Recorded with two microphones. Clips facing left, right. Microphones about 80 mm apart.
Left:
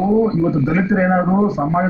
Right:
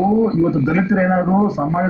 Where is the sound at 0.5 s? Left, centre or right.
Left.